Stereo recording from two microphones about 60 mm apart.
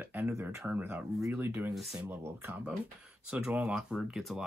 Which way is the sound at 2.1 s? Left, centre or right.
Right.